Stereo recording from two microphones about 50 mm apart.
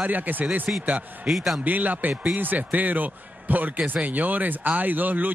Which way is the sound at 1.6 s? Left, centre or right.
Right.